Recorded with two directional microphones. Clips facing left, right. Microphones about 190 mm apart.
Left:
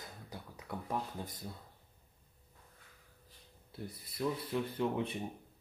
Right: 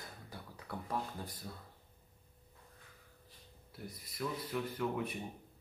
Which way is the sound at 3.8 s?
30° left (ahead or behind).